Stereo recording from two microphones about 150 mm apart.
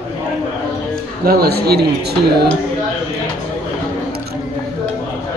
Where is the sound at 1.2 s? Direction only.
90° right.